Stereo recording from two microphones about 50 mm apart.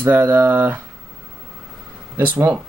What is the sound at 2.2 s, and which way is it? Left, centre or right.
Speech, right.